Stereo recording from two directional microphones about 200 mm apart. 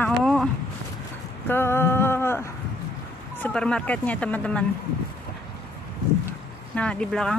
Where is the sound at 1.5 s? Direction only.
10° left (ahead or behind).